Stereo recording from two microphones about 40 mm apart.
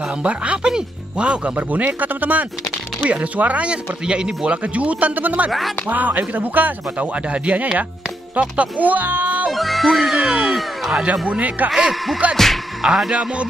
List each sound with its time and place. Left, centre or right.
0.2 s speech: right
1.9 s speech: right
4.7 s speech: right
7.2 s speech: right
9.5 s music: centre
11.2 s speech: right
11.7 s speech: centre
13.1 s speech: right